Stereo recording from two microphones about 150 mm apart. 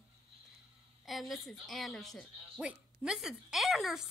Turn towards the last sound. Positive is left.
turn(degrees=0)  # may be behind; listen again after turning